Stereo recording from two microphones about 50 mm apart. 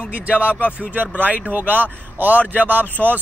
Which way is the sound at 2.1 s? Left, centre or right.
Right.